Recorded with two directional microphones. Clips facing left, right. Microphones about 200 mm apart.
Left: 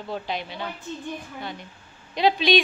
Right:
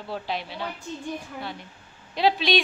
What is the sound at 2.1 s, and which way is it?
Speech, centre (ahead or behind).